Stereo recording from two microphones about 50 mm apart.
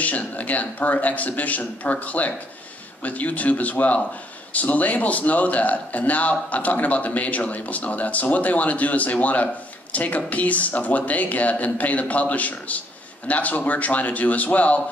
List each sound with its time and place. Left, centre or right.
0.0 s a man's voice: left